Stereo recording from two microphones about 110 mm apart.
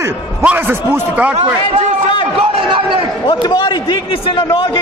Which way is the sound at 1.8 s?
50° left (ahead or behind).